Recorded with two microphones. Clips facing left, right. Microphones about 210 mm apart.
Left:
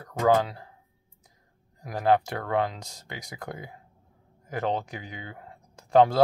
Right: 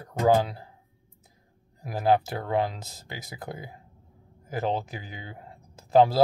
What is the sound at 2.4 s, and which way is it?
Speech, 30° right (ahead or behind).